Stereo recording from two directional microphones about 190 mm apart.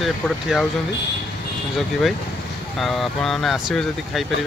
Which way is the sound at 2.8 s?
Centre (ahead or behind).